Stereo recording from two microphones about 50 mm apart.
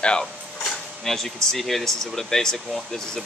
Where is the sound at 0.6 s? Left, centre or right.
Centre.